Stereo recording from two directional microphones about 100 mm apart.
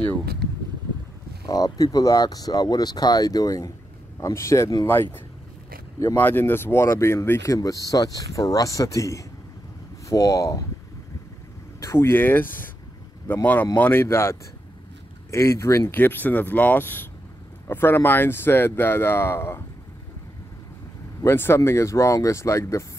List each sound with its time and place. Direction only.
1.4 s speech: 40° left (ahead or behind)
11.8 s speech: 30° left (ahead or behind)
15.3 s speech: 30° left (ahead or behind)
21.2 s speech: 25° left (ahead or behind)